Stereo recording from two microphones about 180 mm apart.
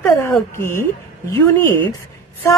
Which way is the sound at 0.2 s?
15° left (ahead or behind).